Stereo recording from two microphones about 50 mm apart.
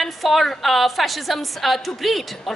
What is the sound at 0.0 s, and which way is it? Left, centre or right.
A woman's voice, centre.